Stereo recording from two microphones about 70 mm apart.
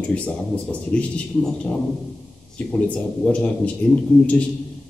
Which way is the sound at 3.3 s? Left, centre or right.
Centre.